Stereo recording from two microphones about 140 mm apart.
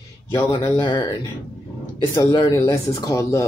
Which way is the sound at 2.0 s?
25° left (ahead or behind).